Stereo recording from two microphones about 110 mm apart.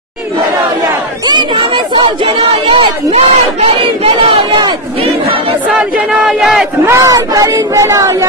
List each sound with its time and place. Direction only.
2.8 s speech: 60° right (ahead or behind)
5.7 s battle cry: 5° right (ahead or behind)
6.9 s speech: 30° right (ahead or behind)